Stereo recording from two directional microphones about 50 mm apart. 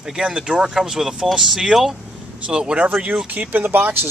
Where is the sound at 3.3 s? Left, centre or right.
Right.